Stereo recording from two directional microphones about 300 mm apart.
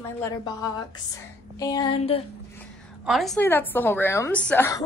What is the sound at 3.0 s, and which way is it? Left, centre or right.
A woman's voice, centre.